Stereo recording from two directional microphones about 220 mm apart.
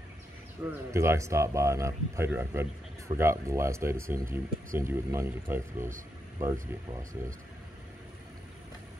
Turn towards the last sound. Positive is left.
turn(degrees=-35)  # may be behind; listen again after turning